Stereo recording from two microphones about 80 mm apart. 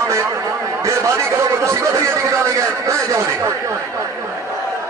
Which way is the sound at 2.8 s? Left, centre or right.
Right.